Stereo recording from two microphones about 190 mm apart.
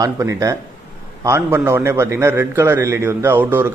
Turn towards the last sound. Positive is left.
turn(degrees=-10)  # may be behind; listen again after turning